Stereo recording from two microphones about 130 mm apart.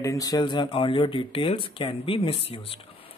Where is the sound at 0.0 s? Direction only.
25° left (ahead or behind).